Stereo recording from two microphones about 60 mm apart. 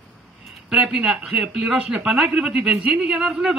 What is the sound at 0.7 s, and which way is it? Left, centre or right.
Speech, centre.